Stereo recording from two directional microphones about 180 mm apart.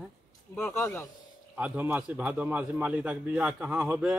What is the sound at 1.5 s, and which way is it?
A man's voice, 10° right (ahead or behind).